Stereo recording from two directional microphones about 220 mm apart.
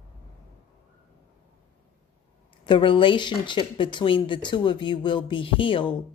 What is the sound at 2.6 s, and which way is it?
Speech, 20° left (ahead or behind).